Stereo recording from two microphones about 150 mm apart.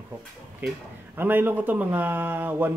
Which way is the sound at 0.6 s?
10° right (ahead or behind).